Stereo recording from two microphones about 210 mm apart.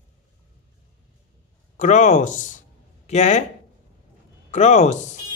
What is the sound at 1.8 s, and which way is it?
Speech, 35° left (ahead or behind).